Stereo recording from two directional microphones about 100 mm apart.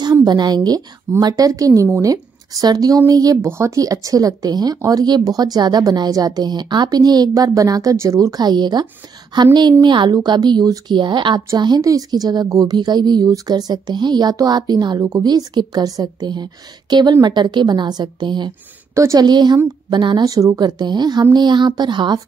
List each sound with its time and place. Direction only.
0.0 s a woman's voice: 45° right (ahead or behind)
3.4 s a woman's voice: 25° right (ahead or behind); by 18.5 s 50° right (ahead or behind)
18.9 s a woman's voice: 30° right (ahead or behind)
19.2 s a woman's voice: 45° right (ahead or behind)
20.2 s a woman's voice: 35° right (ahead or behind)